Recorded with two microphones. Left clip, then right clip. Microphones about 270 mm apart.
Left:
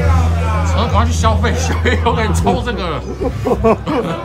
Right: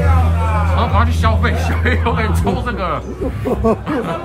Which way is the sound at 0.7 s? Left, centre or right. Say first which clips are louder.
Left 2 dB; centre.